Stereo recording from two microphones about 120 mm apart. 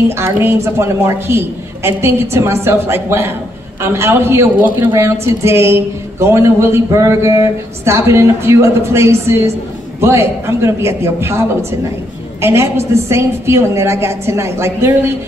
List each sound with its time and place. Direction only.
0.1 s speech: 20° right (ahead or behind)